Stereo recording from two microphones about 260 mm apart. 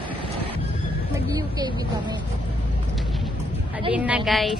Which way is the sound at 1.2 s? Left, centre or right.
Centre.